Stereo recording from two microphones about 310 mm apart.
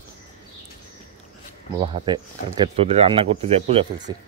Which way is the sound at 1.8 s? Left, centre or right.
Centre.